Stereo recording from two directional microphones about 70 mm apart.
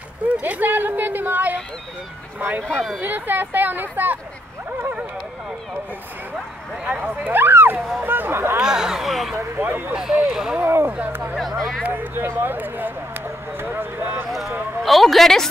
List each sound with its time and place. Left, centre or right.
0.4 s a woman's voice: right
6.8 s speech: right
8.5 s speech: centre
9.6 s speech: right
9.9 s speech: centre
10.6 s speech: right
11.3 s speech: centre
11.8 s speech: right
14.8 s a woman's voice: centre